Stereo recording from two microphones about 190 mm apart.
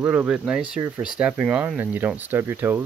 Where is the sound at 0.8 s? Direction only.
15° right (ahead or behind).